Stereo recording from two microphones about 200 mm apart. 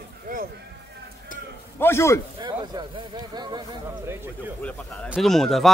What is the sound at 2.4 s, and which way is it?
Speech, 20° right (ahead or behind).